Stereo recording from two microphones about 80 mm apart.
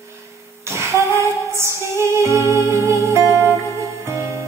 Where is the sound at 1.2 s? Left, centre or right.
Right.